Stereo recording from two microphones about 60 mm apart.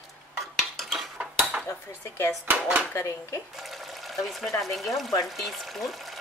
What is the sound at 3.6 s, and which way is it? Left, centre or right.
Water, centre.